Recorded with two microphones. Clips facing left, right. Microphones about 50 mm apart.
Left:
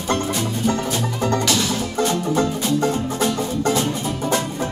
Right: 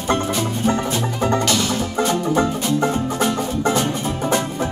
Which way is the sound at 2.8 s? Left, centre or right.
Right.